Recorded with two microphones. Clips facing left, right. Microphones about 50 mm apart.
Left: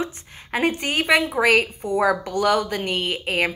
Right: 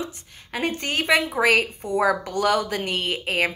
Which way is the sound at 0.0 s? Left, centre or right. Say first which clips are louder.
Left 4 dB; left.